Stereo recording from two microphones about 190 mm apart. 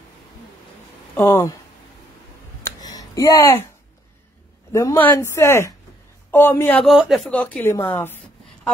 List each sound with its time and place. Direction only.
1.1 s a woman's voice: 15° left (ahead or behind)
2.6 s a sound: 20° left (ahead or behind)
4.7 s a woman's voice: 15° left (ahead or behind)